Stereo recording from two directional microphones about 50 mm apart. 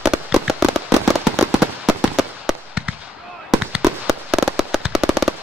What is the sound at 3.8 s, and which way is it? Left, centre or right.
Fireworks, centre.